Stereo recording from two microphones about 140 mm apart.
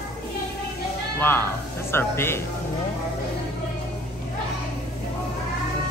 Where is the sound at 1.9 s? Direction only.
15° left (ahead or behind).